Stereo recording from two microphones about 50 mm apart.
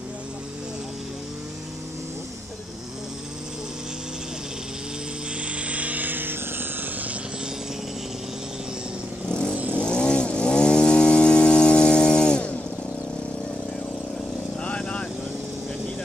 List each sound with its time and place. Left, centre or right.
5.4 s vehicle: right
9.3 s vehicle: centre
14.6 s vehicle: left